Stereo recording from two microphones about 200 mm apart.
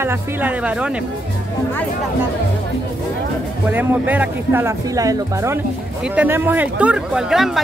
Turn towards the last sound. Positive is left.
turn(degrees=0)  # may be behind; listen again after turning